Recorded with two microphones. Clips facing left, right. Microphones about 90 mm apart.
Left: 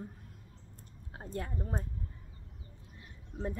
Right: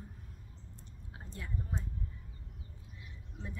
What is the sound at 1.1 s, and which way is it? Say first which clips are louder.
Speech: left 5 dB; 50° left (ahead or behind).